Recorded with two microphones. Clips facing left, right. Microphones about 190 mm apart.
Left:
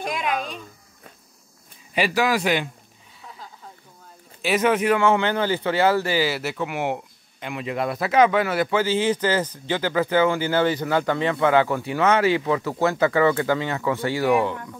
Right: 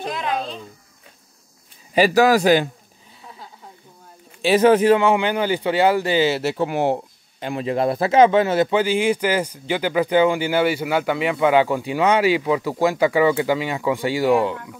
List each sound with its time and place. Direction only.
0.0 s a sound: 15° left (ahead or behind)
0.3 s speech: 30° right (ahead or behind)
2.0 s a man's voice: 40° right (ahead or behind)
4.4 s a man's voice: 30° right (ahead or behind)
4.9 s speech: 15° right (ahead or behind)